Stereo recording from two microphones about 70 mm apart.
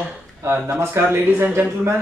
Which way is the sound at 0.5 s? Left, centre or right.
Right.